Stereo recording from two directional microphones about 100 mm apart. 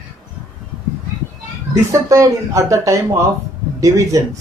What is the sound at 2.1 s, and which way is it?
Speech, 30° right (ahead or behind).